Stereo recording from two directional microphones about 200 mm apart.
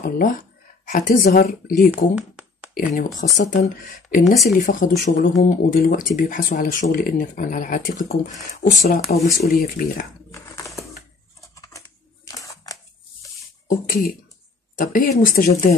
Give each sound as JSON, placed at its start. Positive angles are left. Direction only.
{"t": 0.0, "sound": "speech", "side_deg": 45}
{"t": 2.1, "sound": "a sound", "side_deg": -5}
{"t": 2.7, "sound": "speech", "side_deg": 45}
{"t": 4.2, "sound": "speech", "side_deg": 0}
{"t": 4.6, "sound": "speech", "side_deg": 40}
{"t": 10.3, "sound": "a sound", "side_deg": 15}
{"t": 13.7, "sound": "speech", "side_deg": 45}